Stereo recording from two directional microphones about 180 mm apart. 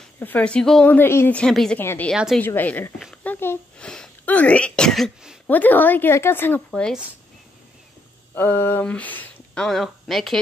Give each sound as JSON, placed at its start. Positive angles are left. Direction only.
{"t": 0.0, "sound": "a woman's voice", "side_deg": 10}
{"t": 2.1, "sound": "speech", "side_deg": 0}
{"t": 2.4, "sound": "a woman's voice", "side_deg": 10}
{"t": 3.0, "sound": "a sound", "side_deg": 0}
{"t": 3.3, "sound": "speech", "side_deg": 10}
{"t": 5.5, "sound": "a woman's voice", "side_deg": 10}
{"t": 8.4, "sound": "a woman's voice", "side_deg": 10}